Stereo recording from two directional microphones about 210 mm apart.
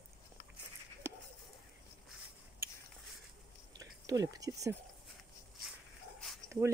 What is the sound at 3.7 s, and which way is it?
Speech, 15° right (ahead or behind).